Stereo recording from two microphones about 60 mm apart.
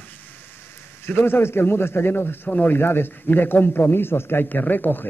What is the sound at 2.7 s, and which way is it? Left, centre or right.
Speech, left.